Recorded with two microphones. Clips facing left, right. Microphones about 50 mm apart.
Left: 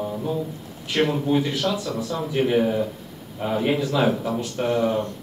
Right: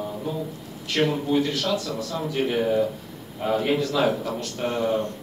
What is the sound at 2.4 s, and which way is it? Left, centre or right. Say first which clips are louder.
A man's voice: left 1 dB; centre.